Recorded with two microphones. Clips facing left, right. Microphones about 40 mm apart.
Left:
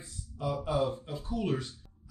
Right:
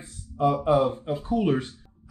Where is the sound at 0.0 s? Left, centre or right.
Right.